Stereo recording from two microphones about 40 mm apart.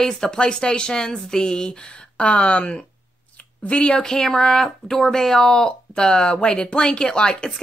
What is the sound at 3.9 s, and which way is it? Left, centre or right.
Speech, centre.